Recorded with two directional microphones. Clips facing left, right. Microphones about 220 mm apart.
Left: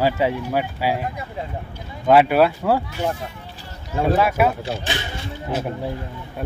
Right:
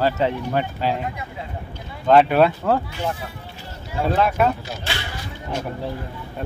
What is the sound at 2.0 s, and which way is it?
Speech, 5° left (ahead or behind).